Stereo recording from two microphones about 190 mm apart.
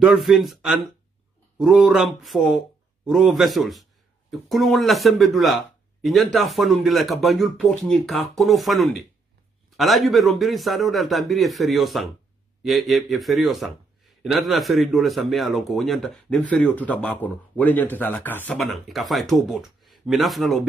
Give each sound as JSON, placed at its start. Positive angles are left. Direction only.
{"t": 0.0, "sound": "speech", "side_deg": -5}